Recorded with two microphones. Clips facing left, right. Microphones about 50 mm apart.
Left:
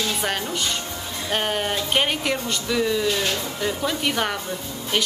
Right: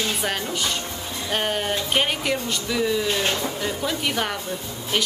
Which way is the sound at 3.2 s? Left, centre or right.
Right.